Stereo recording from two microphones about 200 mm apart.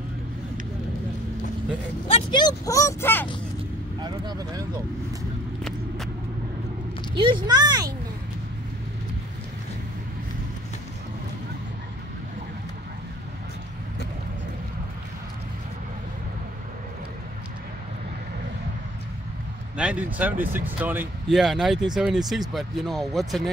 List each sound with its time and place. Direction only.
2.3 s speech: 20° left (ahead or behind)
4.0 s speech: 20° right (ahead or behind)
5.6 s vehicle: centre (ahead or behind)
7.2 s speech: 25° right (ahead or behind)
19.8 s speech: 5° right (ahead or behind)